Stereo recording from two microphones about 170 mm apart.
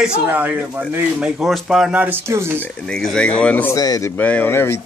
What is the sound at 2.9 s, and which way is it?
Speech, 5° left (ahead or behind).